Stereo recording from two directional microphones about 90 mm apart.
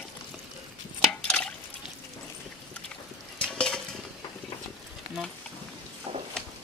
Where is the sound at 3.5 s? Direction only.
5° left (ahead or behind).